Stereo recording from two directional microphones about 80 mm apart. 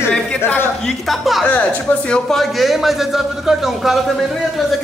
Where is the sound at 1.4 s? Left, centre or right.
Centre.